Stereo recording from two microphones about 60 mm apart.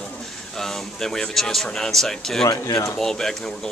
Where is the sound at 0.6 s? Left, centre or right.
Centre.